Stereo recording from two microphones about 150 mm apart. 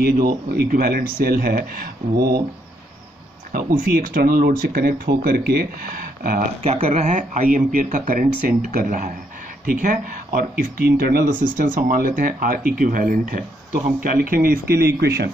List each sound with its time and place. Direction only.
0.0 s speech: 85° right
3.5 s speech: 75° right (ahead or behind)
6.7 s speech: 50° right (ahead or behind); by 11.2 s 80° right
11.5 s speech: 70° right (ahead or behind); by 15.3 s 90° right